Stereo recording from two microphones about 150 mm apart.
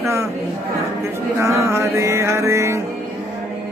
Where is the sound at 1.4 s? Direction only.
20° right (ahead or behind).